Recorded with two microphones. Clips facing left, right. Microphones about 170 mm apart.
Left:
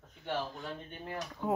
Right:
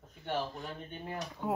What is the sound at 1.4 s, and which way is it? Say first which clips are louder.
Speech: left 2 dB; 5° right (ahead or behind).